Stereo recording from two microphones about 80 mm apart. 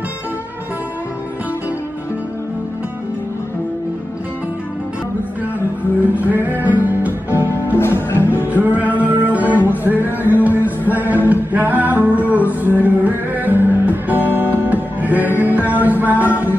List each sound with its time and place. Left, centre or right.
6.1 s music: right
7.7 s music: left
8.5 s music: right
9.5 s music: left
10.3 s music: right